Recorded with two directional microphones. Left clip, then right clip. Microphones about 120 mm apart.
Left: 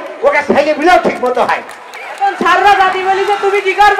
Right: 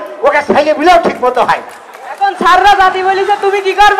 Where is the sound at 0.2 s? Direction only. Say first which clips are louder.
Right 1 dB; 25° right (ahead or behind).